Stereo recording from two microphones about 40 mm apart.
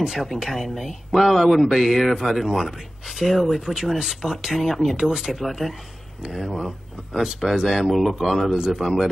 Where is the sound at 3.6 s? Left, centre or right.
Centre.